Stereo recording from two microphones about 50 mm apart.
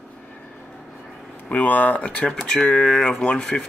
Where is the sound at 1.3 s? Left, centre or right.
Left; by 3.6 s centre.